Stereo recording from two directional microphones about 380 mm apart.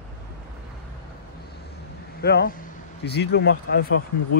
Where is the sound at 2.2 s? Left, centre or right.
Left.